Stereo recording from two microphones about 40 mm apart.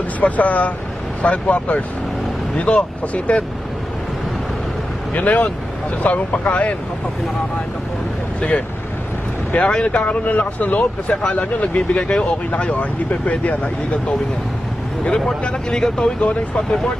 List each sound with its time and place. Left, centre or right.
0.2 s speech: left
5.1 s speech: left
8.4 s speech: left
12.4 s speech: left
15.0 s speech: left
16.2 s speech: left